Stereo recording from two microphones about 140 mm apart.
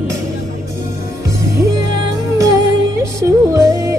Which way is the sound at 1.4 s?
20° right (ahead or behind).